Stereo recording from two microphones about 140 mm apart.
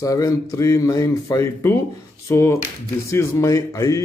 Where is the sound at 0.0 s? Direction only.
25° left (ahead or behind).